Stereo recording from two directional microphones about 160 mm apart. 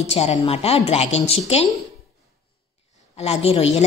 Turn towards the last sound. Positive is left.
turn(degrees=40)  # may be behind; listen again after turning